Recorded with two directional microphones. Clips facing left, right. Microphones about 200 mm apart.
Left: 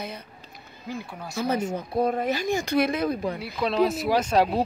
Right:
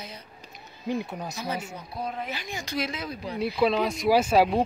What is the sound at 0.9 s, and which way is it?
Speech, 20° right (ahead or behind).